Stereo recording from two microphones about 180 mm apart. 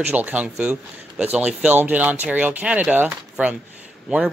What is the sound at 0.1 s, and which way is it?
Speech, 10° right (ahead or behind).